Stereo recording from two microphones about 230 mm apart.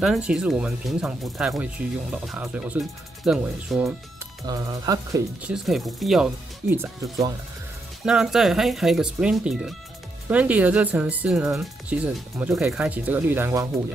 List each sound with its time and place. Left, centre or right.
0.0 s speech: centre
4.5 s speech: centre
5.5 s speech: centre
6.7 s speech: centre